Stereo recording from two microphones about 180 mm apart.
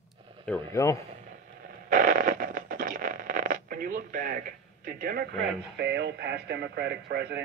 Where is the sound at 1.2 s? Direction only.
50° right (ahead or behind).